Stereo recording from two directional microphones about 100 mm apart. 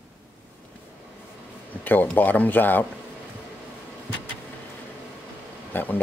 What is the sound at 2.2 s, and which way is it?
Speech, 20° left (ahead or behind).